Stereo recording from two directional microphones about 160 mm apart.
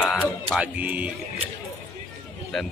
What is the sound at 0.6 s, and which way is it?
Speech, 10° right (ahead or behind).